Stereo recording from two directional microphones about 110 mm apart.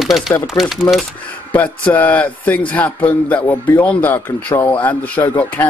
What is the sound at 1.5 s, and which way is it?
A man's voice, 15° left (ahead or behind).